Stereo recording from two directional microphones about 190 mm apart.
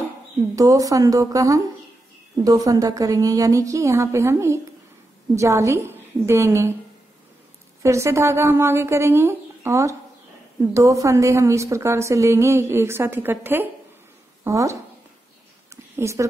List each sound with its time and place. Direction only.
0.6 s a woman's voice: 20° right (ahead or behind)
7.8 s a woman's voice: 15° right (ahead or behind)
15.7 s a sound: 15° right (ahead or behind)